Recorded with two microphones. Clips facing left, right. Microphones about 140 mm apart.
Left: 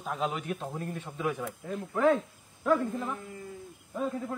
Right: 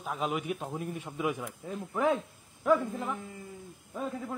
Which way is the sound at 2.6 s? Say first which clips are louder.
Even; 5° right (ahead or behind).